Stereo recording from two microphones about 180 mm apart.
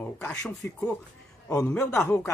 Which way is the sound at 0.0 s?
10° left (ahead or behind).